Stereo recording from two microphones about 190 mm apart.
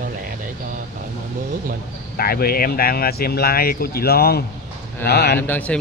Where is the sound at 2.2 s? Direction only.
55° left (ahead or behind).